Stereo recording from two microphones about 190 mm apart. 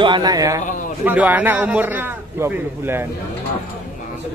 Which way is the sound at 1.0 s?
10° right (ahead or behind).